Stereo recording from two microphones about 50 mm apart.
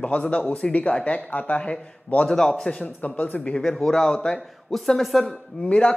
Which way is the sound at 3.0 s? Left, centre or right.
Left.